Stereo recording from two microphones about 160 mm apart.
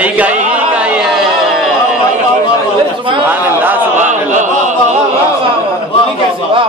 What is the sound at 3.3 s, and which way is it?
Speech, 10° right (ahead or behind).